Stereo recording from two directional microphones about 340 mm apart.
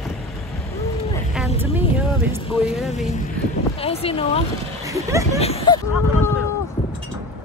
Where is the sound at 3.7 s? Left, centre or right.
Centre.